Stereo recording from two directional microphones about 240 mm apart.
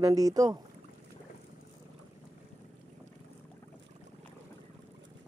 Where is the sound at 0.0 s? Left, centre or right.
Centre.